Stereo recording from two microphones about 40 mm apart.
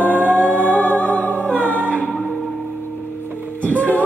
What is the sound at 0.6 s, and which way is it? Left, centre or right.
Music, left.